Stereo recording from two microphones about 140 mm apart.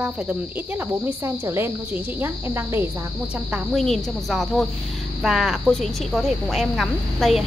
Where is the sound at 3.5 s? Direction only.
Centre (ahead or behind).